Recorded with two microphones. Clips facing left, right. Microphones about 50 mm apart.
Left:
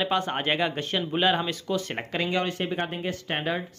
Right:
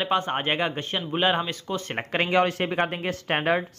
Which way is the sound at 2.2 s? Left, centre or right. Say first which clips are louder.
Right 5 dB; right.